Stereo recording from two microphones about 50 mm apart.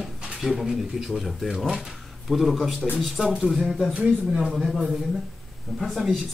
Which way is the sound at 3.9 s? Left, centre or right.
Right.